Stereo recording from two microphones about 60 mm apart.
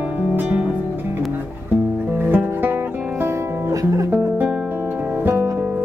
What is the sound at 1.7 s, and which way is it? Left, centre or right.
Music, right.